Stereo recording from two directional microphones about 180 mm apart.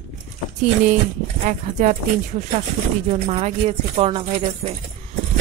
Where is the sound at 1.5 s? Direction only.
45° right (ahead or behind).